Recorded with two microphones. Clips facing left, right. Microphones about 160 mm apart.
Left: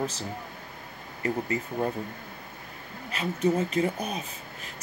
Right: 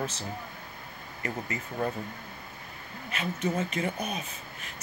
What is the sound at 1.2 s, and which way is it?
Speech, 35° left (ahead or behind).